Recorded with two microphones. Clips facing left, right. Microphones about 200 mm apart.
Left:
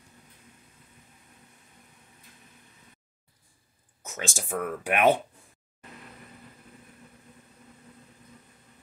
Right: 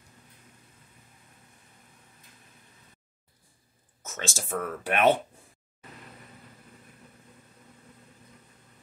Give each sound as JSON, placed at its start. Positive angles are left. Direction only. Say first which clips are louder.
{"t": 4.1, "sound": "speech", "louder": "even", "side_deg": 15}